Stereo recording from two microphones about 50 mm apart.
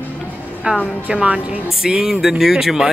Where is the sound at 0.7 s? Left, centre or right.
Right.